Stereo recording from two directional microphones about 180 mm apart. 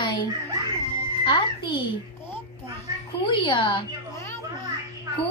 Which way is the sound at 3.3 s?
25° left (ahead or behind).